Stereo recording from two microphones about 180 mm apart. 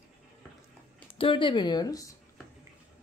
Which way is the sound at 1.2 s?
30° left (ahead or behind).